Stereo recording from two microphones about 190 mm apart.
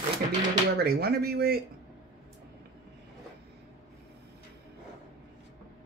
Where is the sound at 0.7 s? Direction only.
55° right (ahead or behind).